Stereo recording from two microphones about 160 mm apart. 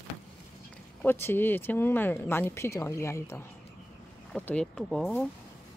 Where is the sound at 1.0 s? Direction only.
15° left (ahead or behind).